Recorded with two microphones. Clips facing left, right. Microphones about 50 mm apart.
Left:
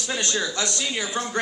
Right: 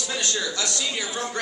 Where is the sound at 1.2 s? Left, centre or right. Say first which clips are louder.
Left 2 dB; left.